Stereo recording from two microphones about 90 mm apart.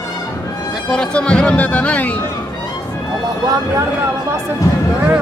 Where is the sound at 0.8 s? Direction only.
10° left (ahead or behind).